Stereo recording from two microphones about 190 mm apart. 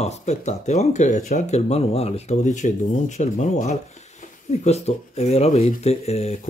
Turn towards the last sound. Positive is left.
turn(degrees=35)  # may be behind; listen again after turning